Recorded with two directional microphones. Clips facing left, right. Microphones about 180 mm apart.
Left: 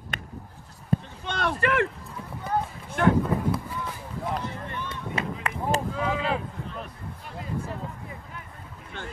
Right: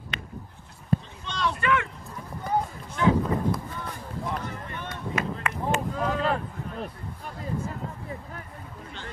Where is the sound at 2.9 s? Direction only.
55° left (ahead or behind).